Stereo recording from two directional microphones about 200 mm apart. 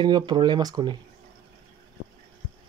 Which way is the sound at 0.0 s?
20° right (ahead or behind).